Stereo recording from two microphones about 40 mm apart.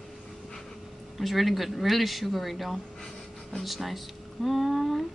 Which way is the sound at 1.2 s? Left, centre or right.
Centre.